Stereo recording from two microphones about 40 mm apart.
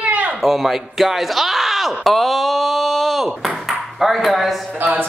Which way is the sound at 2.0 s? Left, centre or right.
Centre.